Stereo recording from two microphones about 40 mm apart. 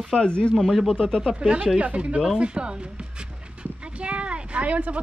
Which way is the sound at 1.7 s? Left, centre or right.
Right.